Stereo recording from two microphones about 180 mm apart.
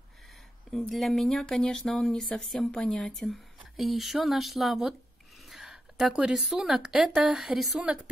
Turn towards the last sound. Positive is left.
turn(degrees=-5)  # may be behind; listen again after turning